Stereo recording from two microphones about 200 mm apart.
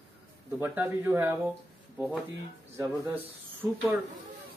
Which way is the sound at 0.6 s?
10° right (ahead or behind).